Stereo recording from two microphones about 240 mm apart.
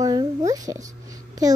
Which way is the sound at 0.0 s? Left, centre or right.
Centre.